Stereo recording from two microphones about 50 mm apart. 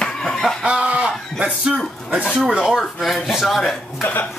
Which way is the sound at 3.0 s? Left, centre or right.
Centre.